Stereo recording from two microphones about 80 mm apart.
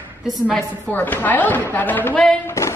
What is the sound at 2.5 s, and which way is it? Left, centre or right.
Singing, left.